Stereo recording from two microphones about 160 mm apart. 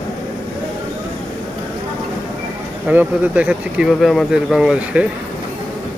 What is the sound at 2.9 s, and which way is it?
Speech, 10° right (ahead or behind).